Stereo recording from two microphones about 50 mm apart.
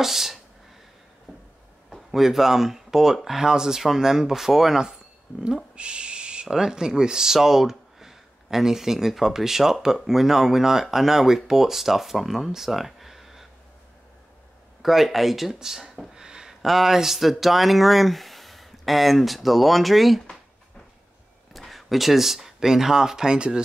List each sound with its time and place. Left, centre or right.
0.0 s speech: centre
1.9 s speech: centre
5.8 s owl: centre
6.5 s speech: centre
14.8 s speech: centre
16.3 s a sound: centre
16.6 s speech: centre
21.5 s speech: centre